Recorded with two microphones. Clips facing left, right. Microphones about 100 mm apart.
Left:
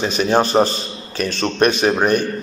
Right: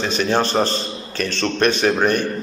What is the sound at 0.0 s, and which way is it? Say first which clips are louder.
A man's voice: left 3 dB; 15° left (ahead or behind).